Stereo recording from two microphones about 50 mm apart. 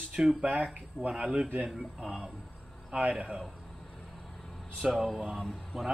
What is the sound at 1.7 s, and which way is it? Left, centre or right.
Speech, centre.